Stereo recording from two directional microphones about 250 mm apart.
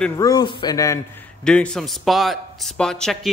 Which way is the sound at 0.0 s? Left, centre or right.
Centre.